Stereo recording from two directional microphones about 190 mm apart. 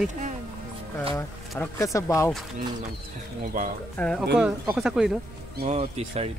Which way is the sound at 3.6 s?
45° right (ahead or behind).